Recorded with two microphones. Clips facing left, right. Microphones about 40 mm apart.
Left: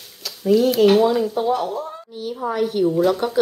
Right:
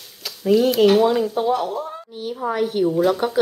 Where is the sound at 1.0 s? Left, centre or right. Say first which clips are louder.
Even; centre.